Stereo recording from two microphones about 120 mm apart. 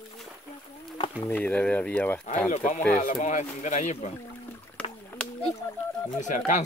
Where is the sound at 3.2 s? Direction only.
90° left; by 4.1 s 75° left (ahead or behind).